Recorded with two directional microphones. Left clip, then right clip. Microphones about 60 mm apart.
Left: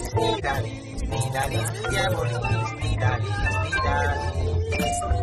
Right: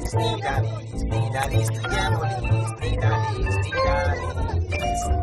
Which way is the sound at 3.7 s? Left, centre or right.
Right.